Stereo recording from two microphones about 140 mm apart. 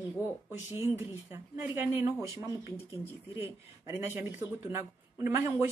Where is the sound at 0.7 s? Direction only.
45° left (ahead or behind).